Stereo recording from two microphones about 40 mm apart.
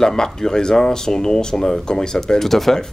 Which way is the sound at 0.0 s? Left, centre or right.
Centre.